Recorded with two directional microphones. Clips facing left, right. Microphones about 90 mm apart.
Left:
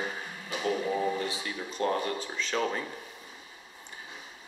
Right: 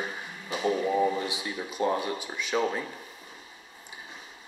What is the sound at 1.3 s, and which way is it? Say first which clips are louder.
Speech: right 2 dB; 15° right (ahead or behind).